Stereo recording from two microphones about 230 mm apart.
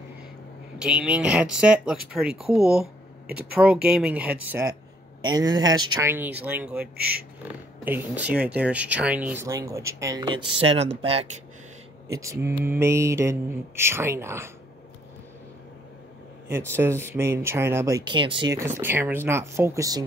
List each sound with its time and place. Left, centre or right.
0.7 s speech: centre
3.3 s speech: right
3.5 s speech: centre
6.8 s speech: right
7.8 s speech: centre; by 11.2 s right
12.1 s speech: centre
16.7 s speech: centre